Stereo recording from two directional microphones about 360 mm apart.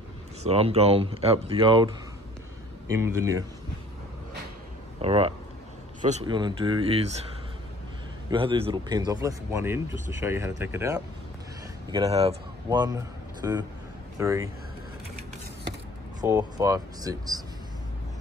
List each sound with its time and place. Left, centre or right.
0.5 s speech: centre
2.9 s speech: centre
5.0 s speech: centre
8.3 s speech: centre
16.2 s speech: centre